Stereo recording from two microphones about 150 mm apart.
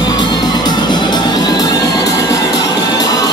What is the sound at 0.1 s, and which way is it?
Music, 30° left (ahead or behind).